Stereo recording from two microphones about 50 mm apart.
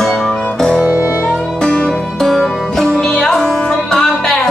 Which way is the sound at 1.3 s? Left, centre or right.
Centre.